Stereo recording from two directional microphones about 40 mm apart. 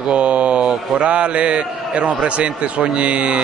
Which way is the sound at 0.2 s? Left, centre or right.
Right.